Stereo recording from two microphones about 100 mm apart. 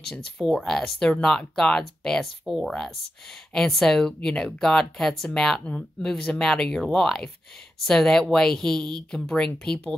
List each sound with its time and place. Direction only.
0.1 s speech: 5° left (ahead or behind)